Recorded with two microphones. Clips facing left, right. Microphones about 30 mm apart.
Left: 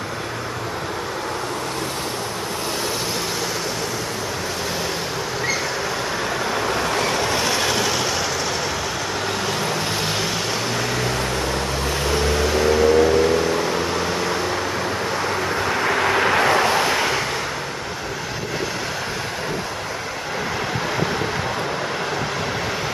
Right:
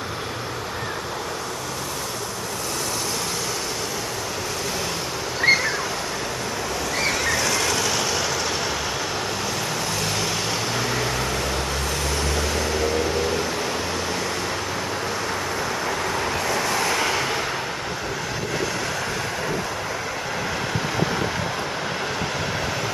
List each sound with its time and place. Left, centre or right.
7.3 s train: left
12.1 s vehicle: centre
15.7 s vehicle: left
16.7 s waves: left